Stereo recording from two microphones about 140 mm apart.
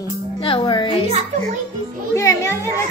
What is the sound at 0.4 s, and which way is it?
Speech, 35° left (ahead or behind).